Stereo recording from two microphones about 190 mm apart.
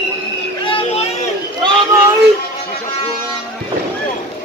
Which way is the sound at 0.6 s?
30° left (ahead or behind).